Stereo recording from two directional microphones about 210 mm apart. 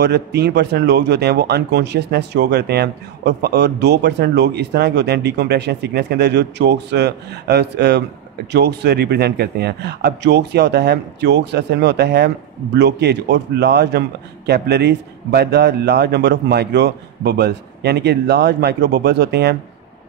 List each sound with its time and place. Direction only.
0.0 s speech: 50° right (ahead or behind)